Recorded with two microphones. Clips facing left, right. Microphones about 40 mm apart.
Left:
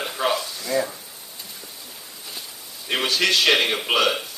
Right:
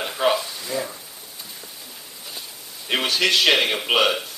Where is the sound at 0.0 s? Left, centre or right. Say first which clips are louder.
Right 2 dB; centre.